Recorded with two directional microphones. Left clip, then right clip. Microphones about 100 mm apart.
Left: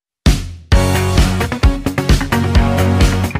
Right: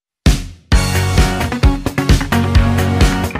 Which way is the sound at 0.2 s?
Centre (ahead or behind).